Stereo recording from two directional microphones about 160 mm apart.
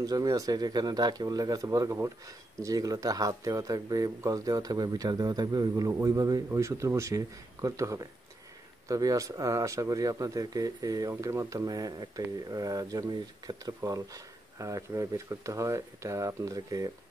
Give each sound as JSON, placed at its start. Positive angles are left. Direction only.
{"t": 0.0, "sound": "speech", "side_deg": -25}